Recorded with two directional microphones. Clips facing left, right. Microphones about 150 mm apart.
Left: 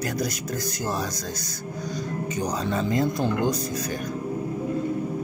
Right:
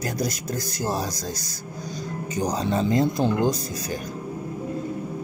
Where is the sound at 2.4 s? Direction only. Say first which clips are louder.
Right 4 dB; 35° right (ahead or behind).